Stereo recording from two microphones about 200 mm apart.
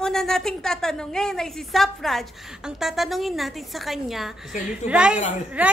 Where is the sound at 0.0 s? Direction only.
Centre (ahead or behind).